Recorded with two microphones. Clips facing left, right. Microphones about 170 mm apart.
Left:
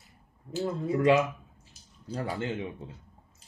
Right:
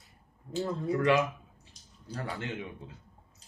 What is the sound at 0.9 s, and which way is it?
Speech, 25° left (ahead or behind).